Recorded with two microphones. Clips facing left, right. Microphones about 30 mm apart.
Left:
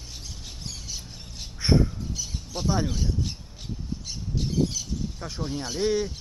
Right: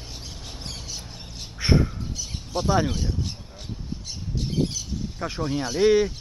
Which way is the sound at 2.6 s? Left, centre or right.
Right.